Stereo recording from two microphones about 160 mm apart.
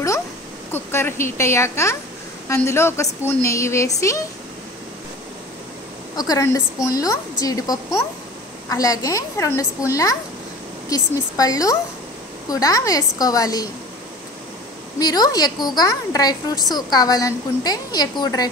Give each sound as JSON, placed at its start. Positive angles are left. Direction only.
{"t": 0.7, "sound": "a woman's voice", "side_deg": 15}
{"t": 6.1, "sound": "a woman's voice", "side_deg": 25}
{"t": 15.0, "sound": "a woman's voice", "side_deg": 25}